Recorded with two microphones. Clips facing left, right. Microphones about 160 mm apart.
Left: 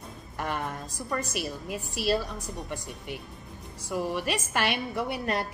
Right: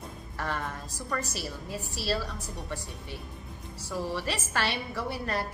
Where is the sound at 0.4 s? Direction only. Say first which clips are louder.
Left 2 dB; 15° left (ahead or behind).